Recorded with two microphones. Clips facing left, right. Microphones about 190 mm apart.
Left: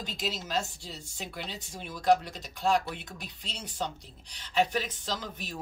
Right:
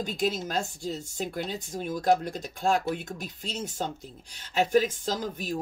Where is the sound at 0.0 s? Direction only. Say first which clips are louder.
Right 8 dB; 50° right (ahead or behind).